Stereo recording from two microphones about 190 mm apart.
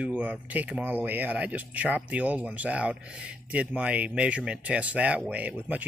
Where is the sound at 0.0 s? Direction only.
5° right (ahead or behind).